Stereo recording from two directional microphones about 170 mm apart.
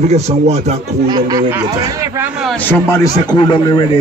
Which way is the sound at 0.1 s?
40° right (ahead or behind).